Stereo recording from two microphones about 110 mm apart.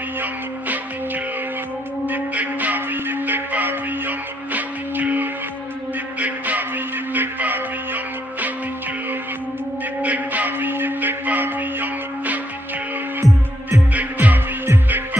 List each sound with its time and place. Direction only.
0.2 s music: 15° right (ahead or behind)
10.0 s music: 15° right (ahead or behind)
13.2 s music: centre (ahead or behind)
13.9 s music: 15° right (ahead or behind)